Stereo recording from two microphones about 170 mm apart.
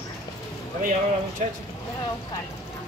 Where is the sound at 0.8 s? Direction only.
50° right (ahead or behind).